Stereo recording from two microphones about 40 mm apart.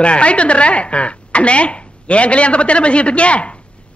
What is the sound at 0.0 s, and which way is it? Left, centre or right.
A man's voice, left.